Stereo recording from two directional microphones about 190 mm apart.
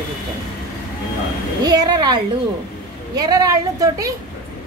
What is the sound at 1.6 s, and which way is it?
A woman's voice, 20° right (ahead or behind).